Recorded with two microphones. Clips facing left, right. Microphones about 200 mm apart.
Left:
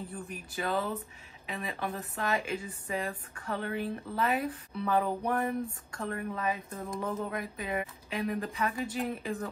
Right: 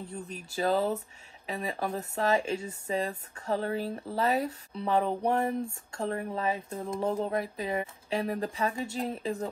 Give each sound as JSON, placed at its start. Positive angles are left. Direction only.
{"t": 0.6, "sound": "speech", "side_deg": -30}